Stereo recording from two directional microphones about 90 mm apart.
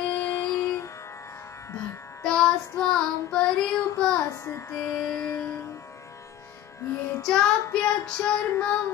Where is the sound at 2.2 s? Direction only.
10° left (ahead or behind).